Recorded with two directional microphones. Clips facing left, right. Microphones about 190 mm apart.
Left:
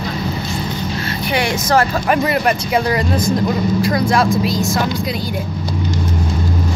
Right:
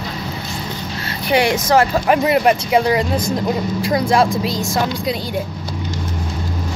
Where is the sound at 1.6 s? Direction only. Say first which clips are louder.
Right 1 dB; 20° right (ahead or behind).